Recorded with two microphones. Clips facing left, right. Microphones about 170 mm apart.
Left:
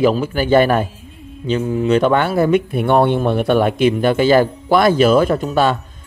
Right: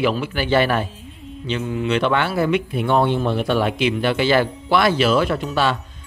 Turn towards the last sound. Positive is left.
turn(degrees=45)  # may be behind; listen again after turning